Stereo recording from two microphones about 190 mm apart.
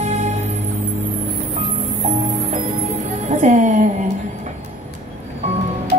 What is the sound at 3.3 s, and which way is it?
Music, 40° right (ahead or behind).